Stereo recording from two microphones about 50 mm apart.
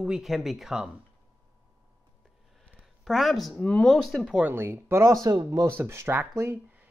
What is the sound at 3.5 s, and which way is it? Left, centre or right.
Speech, left.